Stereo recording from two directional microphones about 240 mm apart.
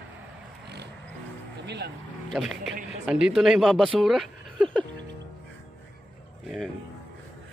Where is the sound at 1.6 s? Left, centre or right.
Right.